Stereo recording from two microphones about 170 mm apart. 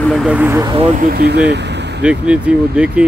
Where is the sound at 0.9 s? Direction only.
60° right (ahead or behind); by 1.6 s 75° right (ahead or behind).